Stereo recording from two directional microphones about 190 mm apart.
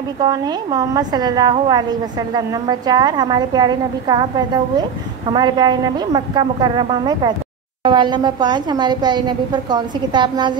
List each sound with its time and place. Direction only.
0.2 s a woman's voice: 20° right (ahead or behind)